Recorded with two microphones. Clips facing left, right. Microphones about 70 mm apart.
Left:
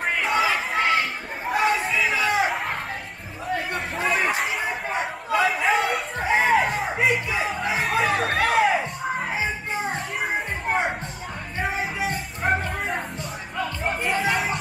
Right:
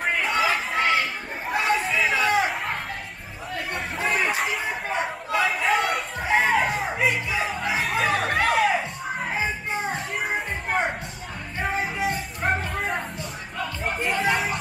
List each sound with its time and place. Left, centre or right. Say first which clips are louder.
0.2 s chatter: left 3 dB; centre
0.7 s chatter: left 1 dB; centre
1.6 s chatter: left 1 dB; centre
3.9 s chatter: left 1 dB; centre
7.3 s music: left 1 dB; centre
8.4 s music: left 1 dB; left
9.3 s music: even; centre
10.7 s a sound: left 1 dB; centre
11.6 s music: right 1 dB; centre